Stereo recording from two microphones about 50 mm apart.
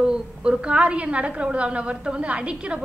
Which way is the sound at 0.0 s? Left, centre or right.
Centre.